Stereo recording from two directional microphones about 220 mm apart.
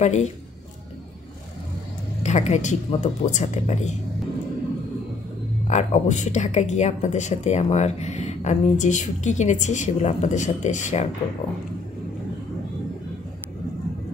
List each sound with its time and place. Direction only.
0.0 s speech: 30° left (ahead or behind)
2.2 s speech: 30° left (ahead or behind)
5.7 s speech: 35° left (ahead or behind)